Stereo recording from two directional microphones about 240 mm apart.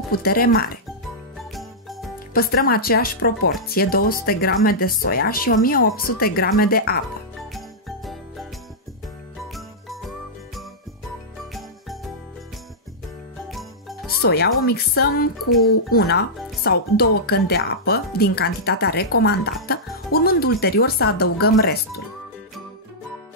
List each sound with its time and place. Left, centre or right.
0.1 s speech: left
1.5 s jingle bell: centre
2.3 s speech: left
7.3 s jingle: centre
9.5 s jingle bell: centre
11.5 s jingle: centre
13.5 s jingle: centre
14.2 s speech: left